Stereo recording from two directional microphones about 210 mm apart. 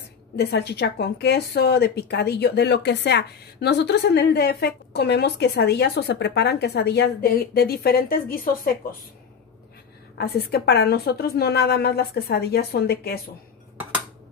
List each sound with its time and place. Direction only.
0.4 s a woman's voice: 55° left (ahead or behind)
10.1 s a woman's voice: 50° left (ahead or behind)